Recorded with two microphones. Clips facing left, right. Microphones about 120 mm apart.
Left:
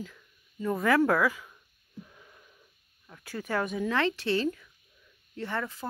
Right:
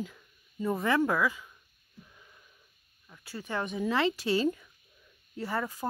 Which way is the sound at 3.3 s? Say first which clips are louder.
Left 4 dB; 15° right (ahead or behind).